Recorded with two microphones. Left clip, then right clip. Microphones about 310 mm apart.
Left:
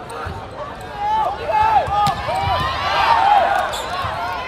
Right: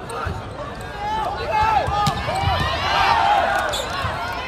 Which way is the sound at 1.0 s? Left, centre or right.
Left.